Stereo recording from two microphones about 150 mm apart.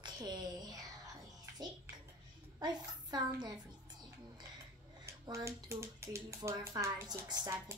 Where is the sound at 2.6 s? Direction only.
30° right (ahead or behind).